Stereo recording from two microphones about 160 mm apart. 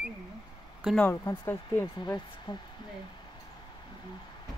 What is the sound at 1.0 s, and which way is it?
Speech, 15° left (ahead or behind).